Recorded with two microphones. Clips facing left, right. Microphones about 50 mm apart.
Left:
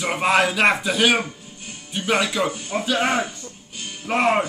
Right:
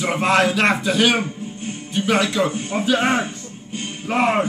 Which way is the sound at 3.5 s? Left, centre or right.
Right.